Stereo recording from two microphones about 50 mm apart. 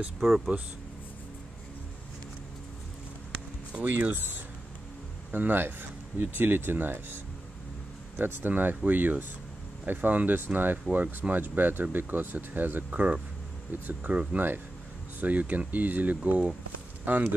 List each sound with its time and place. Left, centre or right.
0.2 s speech: centre
3.7 s speech: right
5.3 s speech: right
8.2 s speech: right